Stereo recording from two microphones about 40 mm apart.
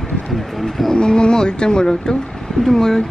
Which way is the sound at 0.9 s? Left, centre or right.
Left.